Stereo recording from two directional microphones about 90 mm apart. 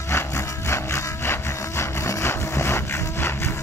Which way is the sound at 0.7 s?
30° left (ahead or behind).